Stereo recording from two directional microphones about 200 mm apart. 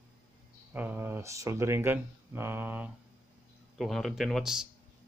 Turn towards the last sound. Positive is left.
turn(degrees=0)  # may be behind; listen again after turning